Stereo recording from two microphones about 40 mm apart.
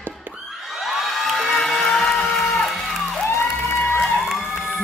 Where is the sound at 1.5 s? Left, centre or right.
Centre.